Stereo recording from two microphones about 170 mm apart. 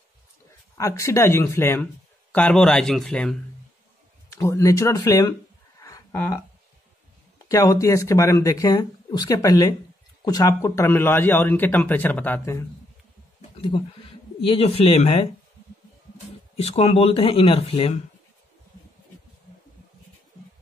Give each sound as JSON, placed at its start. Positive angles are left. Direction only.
{"t": 0.7, "sound": "a man's voice", "side_deg": 20}
{"t": 4.3, "sound": "speech", "side_deg": 15}
{"t": 5.8, "sound": "a sound", "side_deg": 20}
{"t": 7.4, "sound": "a man's voice", "side_deg": 20}
{"t": 13.6, "sound": "speech", "side_deg": 30}
{"t": 16.5, "sound": "speech", "side_deg": 35}